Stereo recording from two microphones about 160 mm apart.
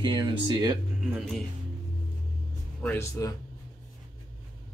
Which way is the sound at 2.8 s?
15° left (ahead or behind).